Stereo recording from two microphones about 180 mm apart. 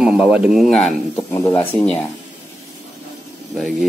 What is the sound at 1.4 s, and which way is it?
Speech, 15° left (ahead or behind).